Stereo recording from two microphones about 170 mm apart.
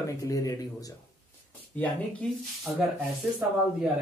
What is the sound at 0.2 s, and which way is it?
Speech, 20° left (ahead or behind).